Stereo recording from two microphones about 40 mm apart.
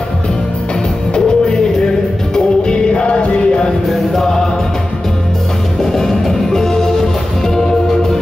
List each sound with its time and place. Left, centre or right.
1.1 s music: centre
3.9 s music: centre
5.8 s music: centre